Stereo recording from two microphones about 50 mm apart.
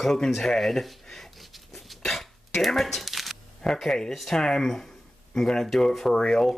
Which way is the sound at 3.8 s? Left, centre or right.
Centre.